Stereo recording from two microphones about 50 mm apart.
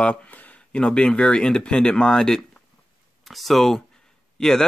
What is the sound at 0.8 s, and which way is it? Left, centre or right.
Speech, centre.